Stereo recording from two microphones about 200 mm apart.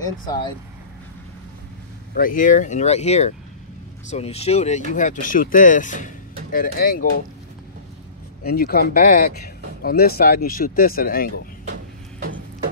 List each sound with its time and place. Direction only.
2.1 s speech: 40° left (ahead or behind)
8.5 s speech: 50° left (ahead or behind)
11.7 s a sound: 45° right (ahead or behind)